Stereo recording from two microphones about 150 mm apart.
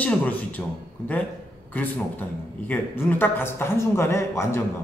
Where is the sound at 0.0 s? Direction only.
10° left (ahead or behind).